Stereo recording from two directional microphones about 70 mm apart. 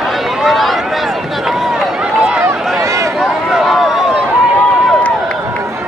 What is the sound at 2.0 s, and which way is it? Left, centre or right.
Run, centre.